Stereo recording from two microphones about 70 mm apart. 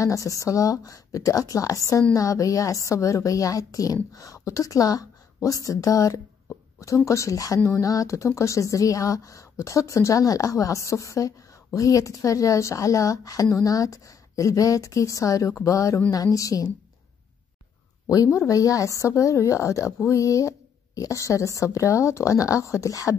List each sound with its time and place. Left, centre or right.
0.0 s a woman's voice: left
18.0 s a woman's voice: left